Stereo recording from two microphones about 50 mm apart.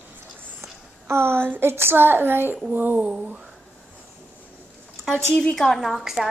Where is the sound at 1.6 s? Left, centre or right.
Right.